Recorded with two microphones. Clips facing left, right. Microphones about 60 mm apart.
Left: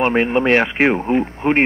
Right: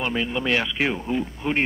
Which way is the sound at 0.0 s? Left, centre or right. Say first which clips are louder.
Left 9 dB; left.